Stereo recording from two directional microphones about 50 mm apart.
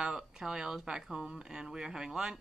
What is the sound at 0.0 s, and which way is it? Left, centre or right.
Speech, centre.